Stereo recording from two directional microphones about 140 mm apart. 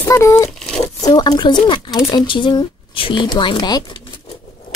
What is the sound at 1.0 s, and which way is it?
Speech, 30° left (ahead or behind).